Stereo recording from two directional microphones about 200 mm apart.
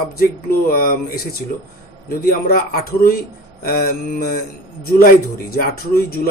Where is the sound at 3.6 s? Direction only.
50° left (ahead or behind).